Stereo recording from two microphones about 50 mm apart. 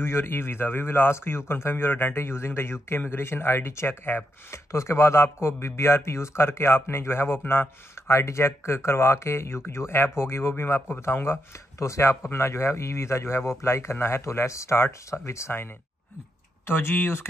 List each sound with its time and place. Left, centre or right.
0.0 s speech: left
4.6 s speech: left
11.8 s speech: left